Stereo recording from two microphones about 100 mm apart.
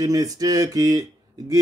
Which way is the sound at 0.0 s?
35° right (ahead or behind).